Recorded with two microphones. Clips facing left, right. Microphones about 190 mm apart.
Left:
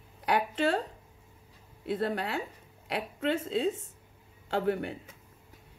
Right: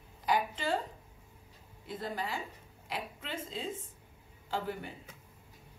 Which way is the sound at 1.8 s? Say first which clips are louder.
Left 7 dB; 65° left (ahead or behind).